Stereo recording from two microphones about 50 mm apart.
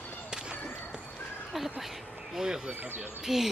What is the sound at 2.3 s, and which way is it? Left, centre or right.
Speech, centre.